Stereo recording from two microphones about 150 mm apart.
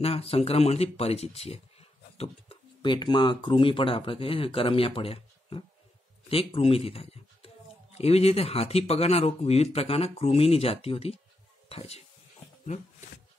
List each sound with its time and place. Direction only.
0.0 s speech: 40° left (ahead or behind)